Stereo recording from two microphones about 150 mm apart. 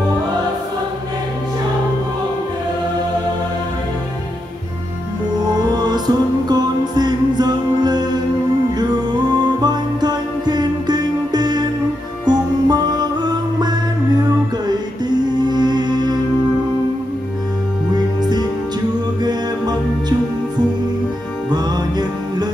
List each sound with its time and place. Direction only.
5.5 s music: 30° right (ahead or behind)
9.6 s music: 30° right (ahead or behind)
19.2 s music: 30° right (ahead or behind)
21.5 s music: 30° right (ahead or behind)